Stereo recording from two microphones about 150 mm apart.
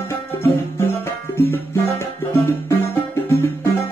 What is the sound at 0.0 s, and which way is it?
Music, 20° left (ahead or behind).